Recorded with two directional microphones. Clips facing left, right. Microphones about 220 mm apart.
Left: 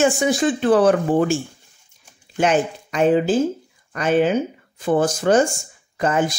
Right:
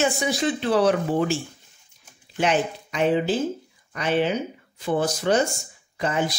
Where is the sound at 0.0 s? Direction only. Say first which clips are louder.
Left 5 dB; 50° left (ahead or behind).